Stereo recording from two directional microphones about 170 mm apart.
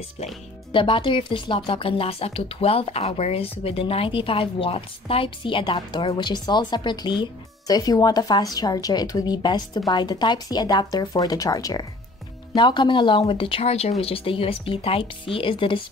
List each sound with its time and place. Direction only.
0.7 s a woman's voice: 30° left (ahead or behind)